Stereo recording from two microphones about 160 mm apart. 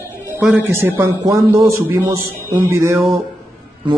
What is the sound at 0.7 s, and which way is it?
A man's voice, 15° right (ahead or behind).